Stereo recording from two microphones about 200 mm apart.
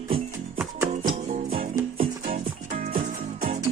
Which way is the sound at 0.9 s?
35° right (ahead or behind).